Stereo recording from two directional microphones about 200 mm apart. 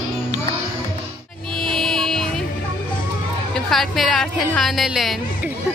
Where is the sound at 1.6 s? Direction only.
Centre (ahead or behind).